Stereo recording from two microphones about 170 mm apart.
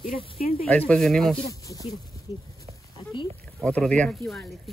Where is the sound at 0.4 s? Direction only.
60° left (ahead or behind).